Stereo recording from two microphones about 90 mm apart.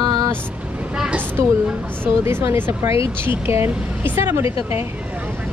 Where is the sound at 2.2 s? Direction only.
25° right (ahead or behind).